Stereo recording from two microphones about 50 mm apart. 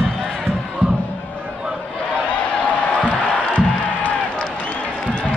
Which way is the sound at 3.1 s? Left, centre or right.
Left.